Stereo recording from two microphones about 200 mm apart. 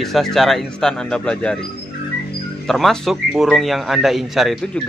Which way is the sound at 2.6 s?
Centre (ahead or behind).